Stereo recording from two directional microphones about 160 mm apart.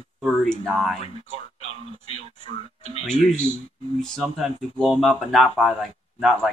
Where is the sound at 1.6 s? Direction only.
40° left (ahead or behind).